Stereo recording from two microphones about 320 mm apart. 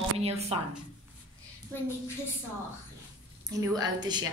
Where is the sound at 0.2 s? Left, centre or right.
Centre.